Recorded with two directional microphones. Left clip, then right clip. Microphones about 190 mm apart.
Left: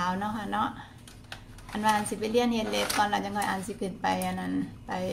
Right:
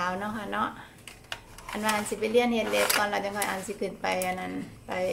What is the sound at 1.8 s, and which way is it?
A woman's voice, 5° left (ahead or behind).